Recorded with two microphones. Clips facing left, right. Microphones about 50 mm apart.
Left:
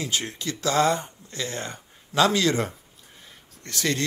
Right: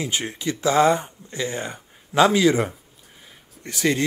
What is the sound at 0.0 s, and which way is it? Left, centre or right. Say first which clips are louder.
Speech: right 3 dB; centre.